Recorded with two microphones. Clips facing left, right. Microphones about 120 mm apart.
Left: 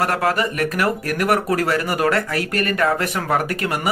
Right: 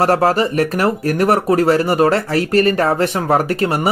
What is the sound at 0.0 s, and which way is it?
Speech, 30° right (ahead or behind).